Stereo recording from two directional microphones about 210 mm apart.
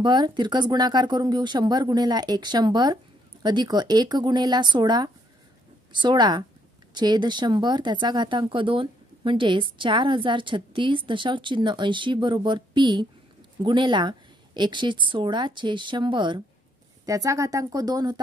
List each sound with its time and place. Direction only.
0.0 s speech: 20° right (ahead or behind)